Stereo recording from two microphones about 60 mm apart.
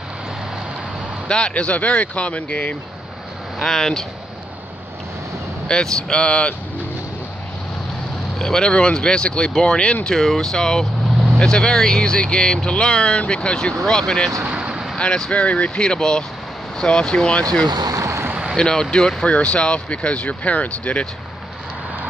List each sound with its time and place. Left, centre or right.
1.2 s speech: centre
3.6 s speech: centre
5.7 s speech: centre
8.4 s speech: centre
14.4 s vehicle: centre
15.0 s speech: centre
17.8 s vehicle: right
18.6 s speech: centre